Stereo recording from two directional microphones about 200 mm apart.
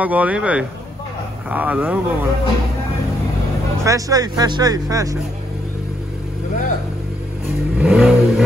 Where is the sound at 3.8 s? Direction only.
15° right (ahead or behind).